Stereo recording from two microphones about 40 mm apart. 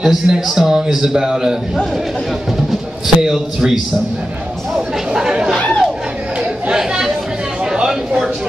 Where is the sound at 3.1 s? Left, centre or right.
Centre.